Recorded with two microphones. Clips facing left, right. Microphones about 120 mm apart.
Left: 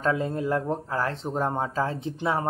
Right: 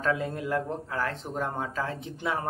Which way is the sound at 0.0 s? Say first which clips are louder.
Left 3 dB; 30° left (ahead or behind).